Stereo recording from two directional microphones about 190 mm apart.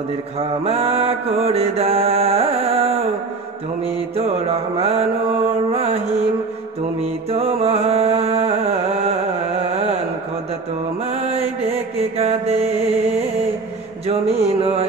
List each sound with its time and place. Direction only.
0.4 s mantra: 30° right (ahead or behind)
4.3 s mantra: 30° right (ahead or behind)
7.0 s music: 30° right (ahead or behind)
11.1 s mantra: 35° right (ahead or behind)